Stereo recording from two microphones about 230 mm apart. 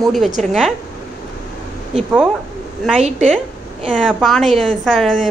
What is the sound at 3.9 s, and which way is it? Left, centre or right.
A woman's voice, centre.